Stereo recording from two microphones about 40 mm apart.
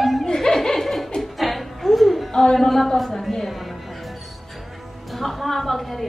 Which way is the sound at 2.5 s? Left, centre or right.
Centre.